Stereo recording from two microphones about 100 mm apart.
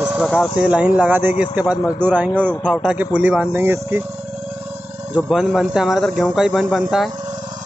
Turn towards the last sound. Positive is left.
turn(degrees=-5)  # may be behind; listen again after turning